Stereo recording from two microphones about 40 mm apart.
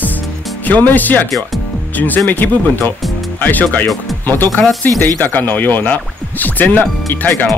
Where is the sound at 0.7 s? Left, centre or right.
Left.